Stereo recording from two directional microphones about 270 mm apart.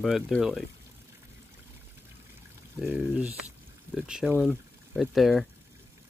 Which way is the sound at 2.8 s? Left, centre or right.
Centre.